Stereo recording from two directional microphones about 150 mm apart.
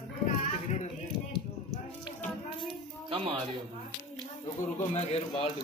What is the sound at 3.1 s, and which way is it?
Speech, 40° right (ahead or behind).